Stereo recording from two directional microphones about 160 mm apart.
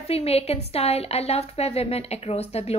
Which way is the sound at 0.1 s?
40° left (ahead or behind).